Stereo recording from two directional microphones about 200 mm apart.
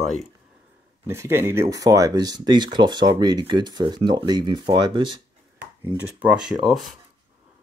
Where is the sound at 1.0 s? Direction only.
15° right (ahead or behind).